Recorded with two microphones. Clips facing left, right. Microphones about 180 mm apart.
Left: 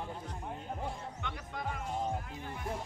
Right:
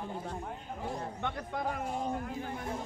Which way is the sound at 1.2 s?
45° right (ahead or behind).